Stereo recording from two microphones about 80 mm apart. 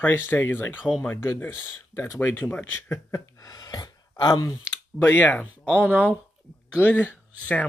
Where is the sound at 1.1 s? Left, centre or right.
Left.